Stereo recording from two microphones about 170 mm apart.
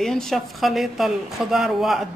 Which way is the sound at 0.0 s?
Centre (ahead or behind).